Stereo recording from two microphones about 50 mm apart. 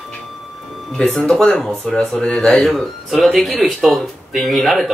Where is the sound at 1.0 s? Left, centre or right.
Centre.